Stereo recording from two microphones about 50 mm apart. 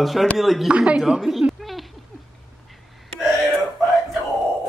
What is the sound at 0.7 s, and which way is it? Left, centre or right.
Speech, right.